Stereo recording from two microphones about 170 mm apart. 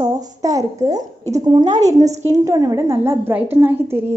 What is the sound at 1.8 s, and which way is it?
Speech, 40° right (ahead or behind).